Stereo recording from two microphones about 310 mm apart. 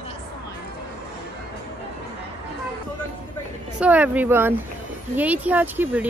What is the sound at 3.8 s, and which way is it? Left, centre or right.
A woman's voice, centre.